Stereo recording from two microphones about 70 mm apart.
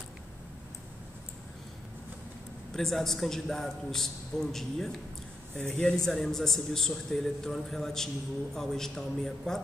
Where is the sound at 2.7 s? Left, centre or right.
Centre.